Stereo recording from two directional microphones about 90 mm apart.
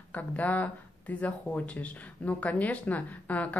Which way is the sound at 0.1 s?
15° left (ahead or behind).